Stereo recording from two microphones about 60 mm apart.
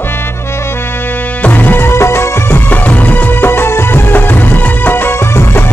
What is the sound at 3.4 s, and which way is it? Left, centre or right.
Music, left.